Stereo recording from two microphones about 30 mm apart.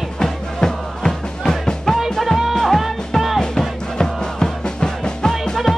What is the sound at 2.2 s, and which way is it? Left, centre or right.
Music, centre.